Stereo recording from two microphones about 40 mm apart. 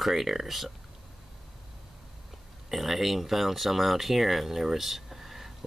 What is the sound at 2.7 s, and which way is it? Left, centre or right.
Speech, centre.